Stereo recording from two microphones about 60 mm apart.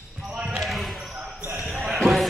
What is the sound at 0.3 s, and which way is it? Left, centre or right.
Basketball bounce, right.